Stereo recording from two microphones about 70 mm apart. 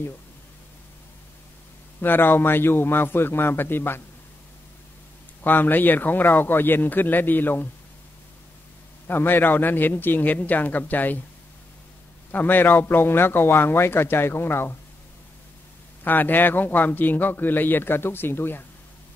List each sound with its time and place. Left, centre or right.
2.0 s a man's voice: left
5.4 s a man's voice: left
9.0 s a man's voice: left
12.3 s a man's voice: left
16.0 s a man's voice: left